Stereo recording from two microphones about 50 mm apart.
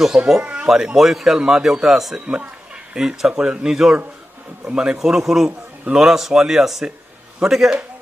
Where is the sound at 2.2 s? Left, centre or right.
Right.